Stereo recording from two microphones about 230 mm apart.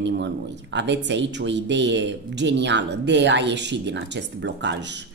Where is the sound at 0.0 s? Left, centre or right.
Right.